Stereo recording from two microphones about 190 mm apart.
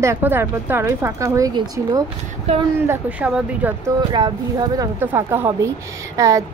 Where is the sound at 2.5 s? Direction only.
35° right (ahead or behind).